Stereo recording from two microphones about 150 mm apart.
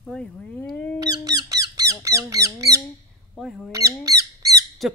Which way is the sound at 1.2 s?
25° right (ahead or behind).